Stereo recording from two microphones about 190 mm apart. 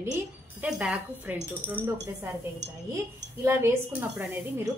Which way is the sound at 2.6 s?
65° right (ahead or behind).